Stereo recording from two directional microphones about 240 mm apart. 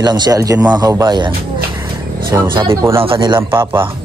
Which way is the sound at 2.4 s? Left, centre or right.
Centre.